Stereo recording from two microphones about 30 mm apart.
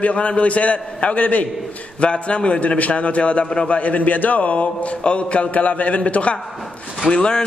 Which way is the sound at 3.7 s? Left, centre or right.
Left.